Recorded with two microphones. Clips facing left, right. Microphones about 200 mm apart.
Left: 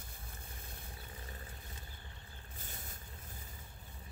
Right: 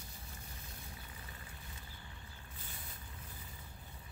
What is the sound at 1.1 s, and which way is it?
Vehicle, 35° left (ahead or behind).